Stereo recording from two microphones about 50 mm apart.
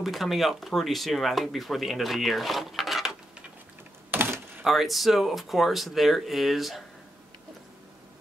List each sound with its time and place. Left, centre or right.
0.0 s speech: centre
4.1 s a sound: right
4.6 s speech: centre